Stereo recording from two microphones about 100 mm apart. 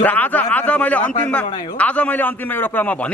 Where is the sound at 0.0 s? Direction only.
15° left (ahead or behind).